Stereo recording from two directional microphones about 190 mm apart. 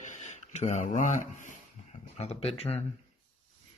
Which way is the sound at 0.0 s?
40° left (ahead or behind).